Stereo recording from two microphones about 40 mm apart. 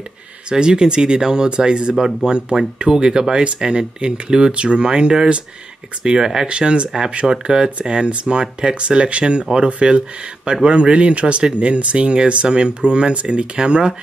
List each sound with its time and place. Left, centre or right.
0.5 s speech: right